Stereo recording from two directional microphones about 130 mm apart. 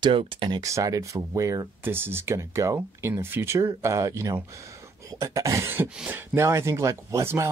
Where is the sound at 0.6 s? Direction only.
25° right (ahead or behind).